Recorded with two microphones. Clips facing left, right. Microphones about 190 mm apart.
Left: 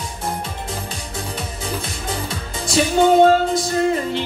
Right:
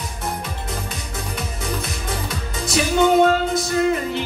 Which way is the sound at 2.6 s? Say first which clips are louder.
Left 2 dB; 30° left (ahead or behind).